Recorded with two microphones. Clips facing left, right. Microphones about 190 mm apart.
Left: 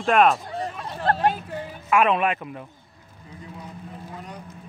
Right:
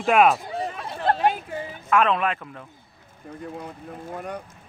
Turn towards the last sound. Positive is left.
turn(degrees=-55)  # may be behind; listen again after turning